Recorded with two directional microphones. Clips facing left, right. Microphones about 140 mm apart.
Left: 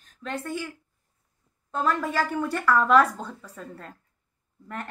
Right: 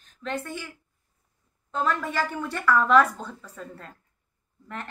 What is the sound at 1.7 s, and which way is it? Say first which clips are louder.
Speech: left 1 dB; 40° left (ahead or behind).